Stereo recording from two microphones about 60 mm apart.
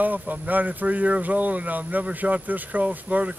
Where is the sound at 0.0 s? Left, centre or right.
Right.